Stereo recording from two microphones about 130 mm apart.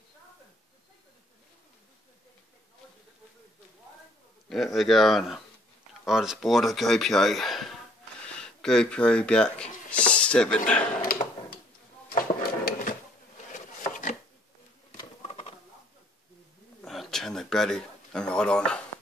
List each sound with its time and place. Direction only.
4.5 s speech: centre (ahead or behind)
9.8 s a sound: 10° left (ahead or behind)
12.1 s drawer open or close: 90° left
13.5 s wood: 75° left (ahead or behind)
14.9 s patter: 55° left (ahead or behind)
16.8 s a sound: centre (ahead or behind)